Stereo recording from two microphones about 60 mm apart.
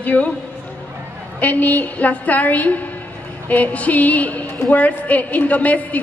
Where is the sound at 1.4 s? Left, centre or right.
Left.